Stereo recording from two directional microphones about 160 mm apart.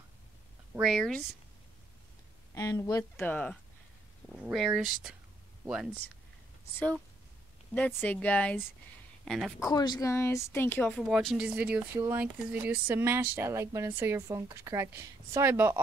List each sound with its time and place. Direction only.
0.7 s speech: centre (ahead or behind)
2.5 s a woman's voice: 20° left (ahead or behind)
4.3 s speech: centre (ahead or behind)
6.7 s a woman's voice: 10° left (ahead or behind)
9.6 s a woman's voice: 25° left (ahead or behind)
11.0 s speech: centre (ahead or behind)